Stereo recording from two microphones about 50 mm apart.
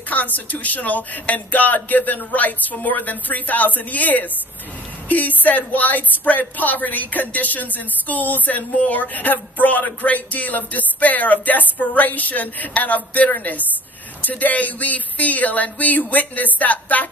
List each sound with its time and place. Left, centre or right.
0.1 s speech: left